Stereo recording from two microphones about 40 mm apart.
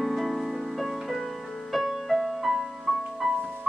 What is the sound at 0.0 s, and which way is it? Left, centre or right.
Music, centre.